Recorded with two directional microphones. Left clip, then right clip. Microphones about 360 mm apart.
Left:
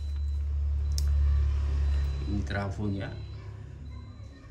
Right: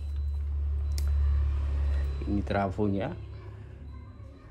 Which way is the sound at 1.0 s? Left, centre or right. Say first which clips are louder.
Left 4 dB; centre.